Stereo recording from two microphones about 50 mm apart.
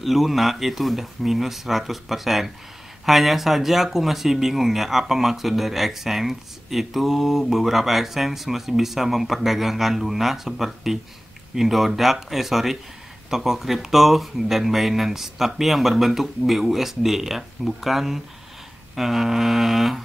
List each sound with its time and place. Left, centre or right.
0.0 s speech: centre